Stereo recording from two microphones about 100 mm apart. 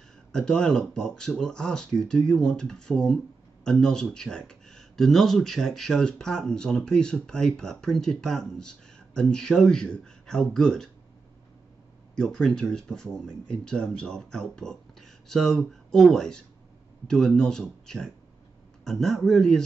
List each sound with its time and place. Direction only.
0.3 s speech: 5° left (ahead or behind)
12.2 s speech: 5° left (ahead or behind)